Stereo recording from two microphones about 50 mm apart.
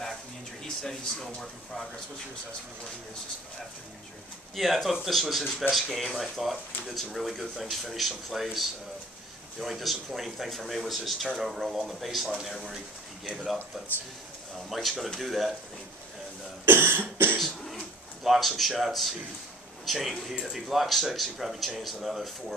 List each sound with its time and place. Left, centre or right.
0.8 s speech: centre
4.6 s speech: centre
13.7 s speech: centre
16.6 s cough: right
17.7 s speech: centre